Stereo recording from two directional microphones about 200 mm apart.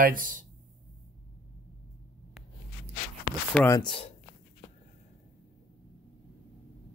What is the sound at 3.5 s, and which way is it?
Speech, 15° left (ahead or behind).